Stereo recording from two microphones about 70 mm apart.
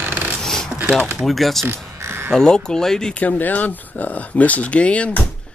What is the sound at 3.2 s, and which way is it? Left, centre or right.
Speech, left.